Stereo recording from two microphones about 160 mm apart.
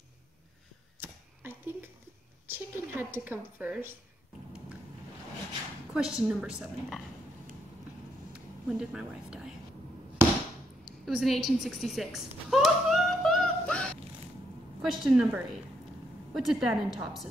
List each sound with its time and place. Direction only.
1.0 s a sound: 15° right (ahead or behind)
2.4 s speech: 15° right (ahead or behind)
5.9 s a woman's voice: 5° right (ahead or behind)
8.3 s a woman's voice: 5° right (ahead or behind)
11.1 s a sound: centre (ahead or behind)
14.8 s a woman's voice: 5° right (ahead or behind)